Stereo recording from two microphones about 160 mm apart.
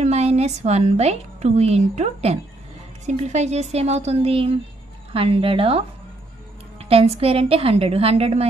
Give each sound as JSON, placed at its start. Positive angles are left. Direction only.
{"t": 0.0, "sound": "a woman's voice", "side_deg": -40}